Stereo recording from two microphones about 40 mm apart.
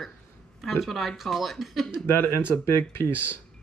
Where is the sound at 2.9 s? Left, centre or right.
Left.